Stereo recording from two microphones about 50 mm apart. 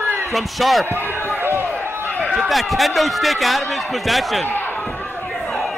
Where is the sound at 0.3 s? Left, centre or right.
Centre.